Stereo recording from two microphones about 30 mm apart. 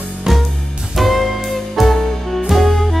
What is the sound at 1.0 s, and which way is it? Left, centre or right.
Music, centre.